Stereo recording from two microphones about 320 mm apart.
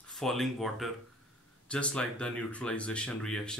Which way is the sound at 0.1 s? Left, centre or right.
Centre.